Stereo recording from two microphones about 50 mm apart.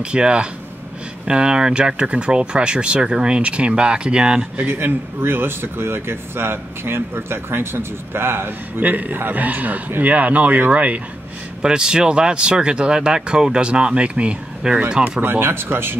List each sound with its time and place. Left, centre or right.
0.0 s speech: centre
4.6 s speech: right
11.6 s speech: centre
15.2 s speech: right